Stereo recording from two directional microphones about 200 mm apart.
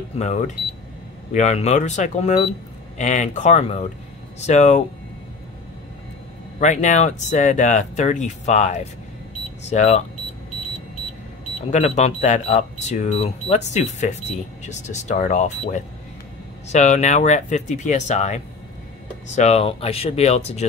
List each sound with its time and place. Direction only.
0.2 s speech: 35° left (ahead or behind)
6.6 s speech: 35° left (ahead or behind)
11.7 s speech: 35° left (ahead or behind)